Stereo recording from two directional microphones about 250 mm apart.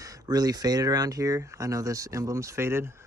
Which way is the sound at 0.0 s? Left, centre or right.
Centre.